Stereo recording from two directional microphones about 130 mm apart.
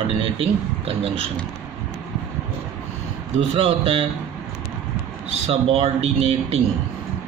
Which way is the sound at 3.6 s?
45° right (ahead or behind).